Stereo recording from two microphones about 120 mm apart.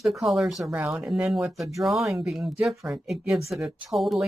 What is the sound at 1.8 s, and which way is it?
Speech, centre (ahead or behind).